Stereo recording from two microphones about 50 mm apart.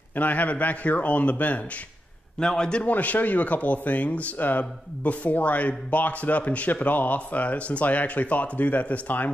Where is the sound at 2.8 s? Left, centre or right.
Left.